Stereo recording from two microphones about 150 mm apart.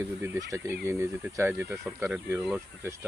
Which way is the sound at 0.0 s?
15° right (ahead or behind).